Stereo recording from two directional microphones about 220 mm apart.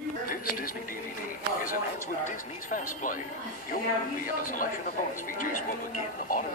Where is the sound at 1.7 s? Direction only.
40° left (ahead or behind).